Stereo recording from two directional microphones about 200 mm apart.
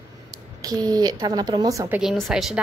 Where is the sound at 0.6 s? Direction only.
20° right (ahead or behind).